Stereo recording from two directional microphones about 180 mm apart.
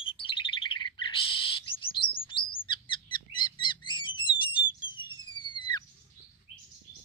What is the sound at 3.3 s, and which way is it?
Bird, 25° left (ahead or behind).